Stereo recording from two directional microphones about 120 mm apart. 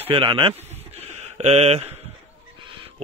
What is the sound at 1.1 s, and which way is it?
Speech, 60° right (ahead or behind).